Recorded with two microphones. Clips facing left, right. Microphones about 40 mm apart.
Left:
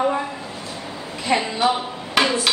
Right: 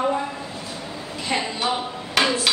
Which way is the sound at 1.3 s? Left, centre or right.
Centre.